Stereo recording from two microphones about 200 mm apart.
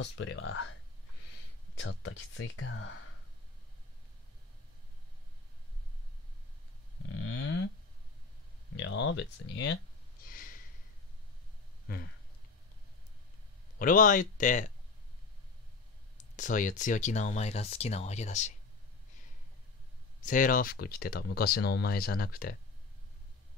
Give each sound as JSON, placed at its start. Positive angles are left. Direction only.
{"t": 0.0, "sound": "speech", "side_deg": 75}
{"t": 1.8, "sound": "speech", "side_deg": 75}
{"t": 7.1, "sound": "cattle", "side_deg": 90}
{"t": 8.7, "sound": "speech", "side_deg": 70}
{"t": 10.2, "sound": "snort", "side_deg": 45}
{"t": 13.7, "sound": "speech", "side_deg": 45}
{"t": 16.3, "sound": "speech", "side_deg": 40}
{"t": 20.2, "sound": "speech", "side_deg": 40}